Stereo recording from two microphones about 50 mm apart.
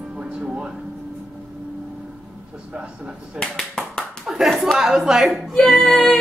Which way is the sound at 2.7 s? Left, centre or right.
Right.